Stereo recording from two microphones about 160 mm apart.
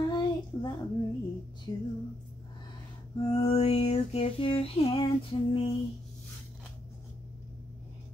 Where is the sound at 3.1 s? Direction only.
30° left (ahead or behind).